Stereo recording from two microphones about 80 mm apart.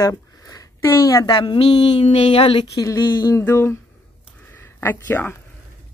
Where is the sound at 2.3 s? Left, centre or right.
Left.